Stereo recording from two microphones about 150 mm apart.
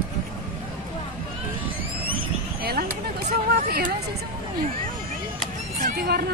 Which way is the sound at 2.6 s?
90° right.